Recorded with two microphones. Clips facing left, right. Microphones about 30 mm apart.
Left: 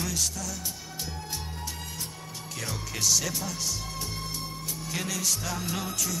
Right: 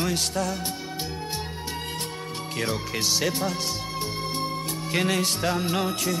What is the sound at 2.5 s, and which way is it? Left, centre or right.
Speech, right.